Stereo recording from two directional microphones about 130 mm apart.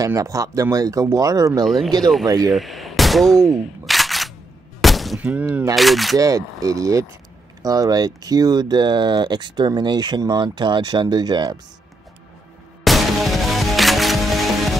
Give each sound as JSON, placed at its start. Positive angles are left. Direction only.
{"t": 0.0, "sound": "speech", "side_deg": -25}
{"t": 1.6, "sound": "speech", "side_deg": 0}
{"t": 2.2, "sound": "speech", "side_deg": -30}
{"t": 2.5, "sound": "a sound", "side_deg": 0}
{"t": 5.2, "sound": "speech", "side_deg": -10}
{"t": 5.8, "sound": "speech", "side_deg": 0}
{"t": 6.1, "sound": "speech", "side_deg": -25}
{"t": 12.8, "sound": "music", "side_deg": 0}